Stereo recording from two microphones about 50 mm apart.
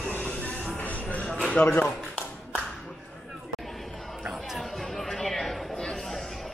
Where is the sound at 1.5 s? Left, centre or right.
Left.